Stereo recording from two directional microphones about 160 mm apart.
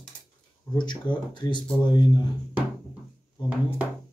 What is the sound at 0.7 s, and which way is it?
Speech, 30° left (ahead or behind).